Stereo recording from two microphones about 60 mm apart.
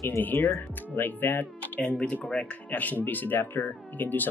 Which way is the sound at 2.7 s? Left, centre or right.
Left.